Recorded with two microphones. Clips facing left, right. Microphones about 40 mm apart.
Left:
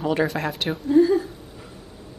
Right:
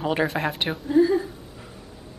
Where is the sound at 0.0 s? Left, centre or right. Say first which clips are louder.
Left 1 dB; centre.